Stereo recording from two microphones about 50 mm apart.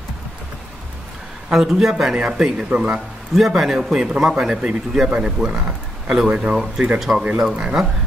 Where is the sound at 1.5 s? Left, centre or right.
Centre.